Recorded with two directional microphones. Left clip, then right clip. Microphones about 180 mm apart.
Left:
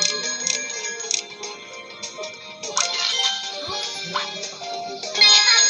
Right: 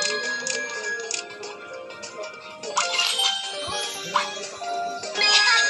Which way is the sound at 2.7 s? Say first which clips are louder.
Left 1 dB; 25° right (ahead or behind).